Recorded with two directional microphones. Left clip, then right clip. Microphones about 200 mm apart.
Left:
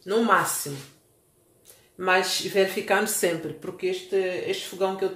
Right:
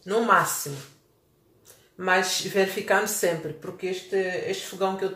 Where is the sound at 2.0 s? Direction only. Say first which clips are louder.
Left 1 dB; 25° left (ahead or behind).